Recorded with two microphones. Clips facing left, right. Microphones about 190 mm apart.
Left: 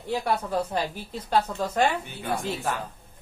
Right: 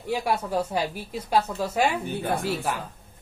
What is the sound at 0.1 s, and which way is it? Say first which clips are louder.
Speech: right 1 dB; 10° right (ahead or behind).